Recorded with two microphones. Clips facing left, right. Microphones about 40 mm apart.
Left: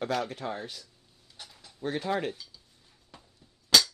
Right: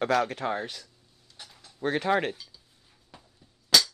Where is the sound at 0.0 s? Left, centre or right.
Right.